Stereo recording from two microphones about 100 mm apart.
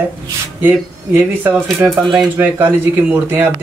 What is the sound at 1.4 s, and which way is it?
Speech, 20° right (ahead or behind).